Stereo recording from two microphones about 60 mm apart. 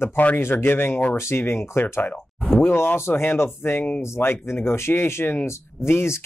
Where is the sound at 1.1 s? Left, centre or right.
Left.